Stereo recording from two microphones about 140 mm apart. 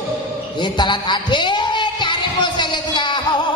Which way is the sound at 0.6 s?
30° left (ahead or behind).